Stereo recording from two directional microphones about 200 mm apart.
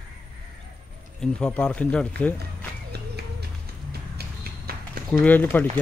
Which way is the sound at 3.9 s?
50° right (ahead or behind).